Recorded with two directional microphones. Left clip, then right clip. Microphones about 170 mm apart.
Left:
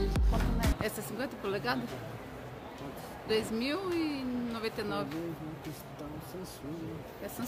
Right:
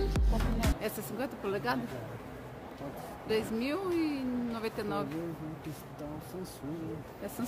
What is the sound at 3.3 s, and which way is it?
Speech, 5° right (ahead or behind).